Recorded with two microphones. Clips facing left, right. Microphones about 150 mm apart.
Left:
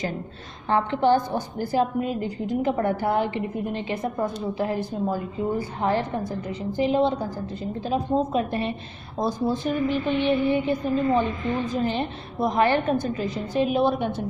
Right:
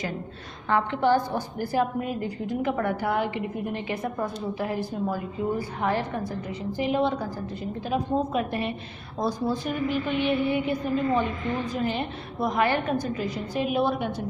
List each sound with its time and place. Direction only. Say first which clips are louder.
0.7 s a woman's voice: left 2 dB; 30° left (ahead or behind)